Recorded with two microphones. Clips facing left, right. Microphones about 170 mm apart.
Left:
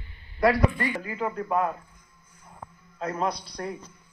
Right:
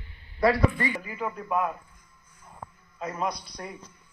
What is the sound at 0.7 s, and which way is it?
Speech, 15° right (ahead or behind).